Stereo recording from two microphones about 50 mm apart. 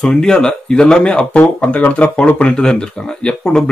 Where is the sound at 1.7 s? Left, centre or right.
Left.